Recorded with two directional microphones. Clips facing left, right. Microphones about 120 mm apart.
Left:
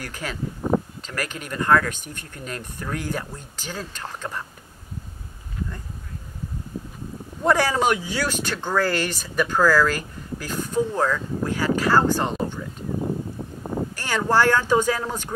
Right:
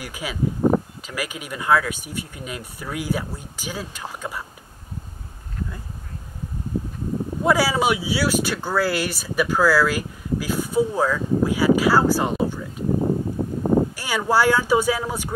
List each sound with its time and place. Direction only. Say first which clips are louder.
0.0 s speech: right 1 dB; 10° right (ahead or behind)
0.6 s a sound: right 4 dB; 40° right (ahead or behind)
1.0 s speech: right 1 dB; 10° right (ahead or behind)
7.4 s speech: even; 5° right (ahead or behind)
13.0 s a sound: right 5 dB; 50° right (ahead or behind)
13.9 s speech: even; 10° right (ahead or behind)